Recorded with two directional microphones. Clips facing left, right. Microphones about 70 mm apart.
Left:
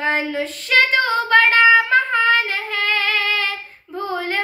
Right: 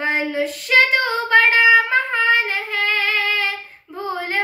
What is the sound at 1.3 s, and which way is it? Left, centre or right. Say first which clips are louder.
Child singing: even; right.